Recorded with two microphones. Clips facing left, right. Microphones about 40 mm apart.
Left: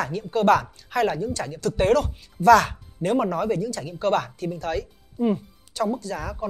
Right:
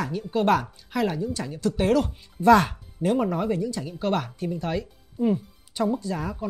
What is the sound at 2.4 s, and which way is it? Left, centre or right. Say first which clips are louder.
Speech: left 2 dB; centre.